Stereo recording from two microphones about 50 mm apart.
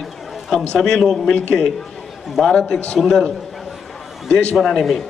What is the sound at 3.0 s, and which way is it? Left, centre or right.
Speech, centre.